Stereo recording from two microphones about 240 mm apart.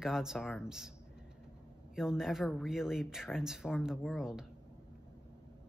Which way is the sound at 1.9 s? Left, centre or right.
Centre.